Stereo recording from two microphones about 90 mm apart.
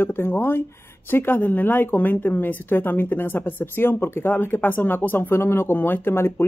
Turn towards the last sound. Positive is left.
turn(degrees=25)  # may be behind; listen again after turning